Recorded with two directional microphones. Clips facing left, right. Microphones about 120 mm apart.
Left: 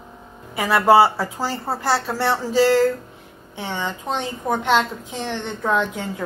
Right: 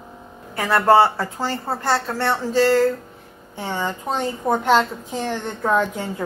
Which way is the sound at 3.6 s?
5° right (ahead or behind).